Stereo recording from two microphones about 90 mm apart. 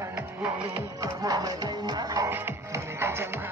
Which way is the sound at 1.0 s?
45° right (ahead or behind).